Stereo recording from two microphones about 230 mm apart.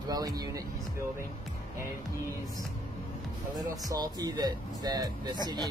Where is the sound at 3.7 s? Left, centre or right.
Centre.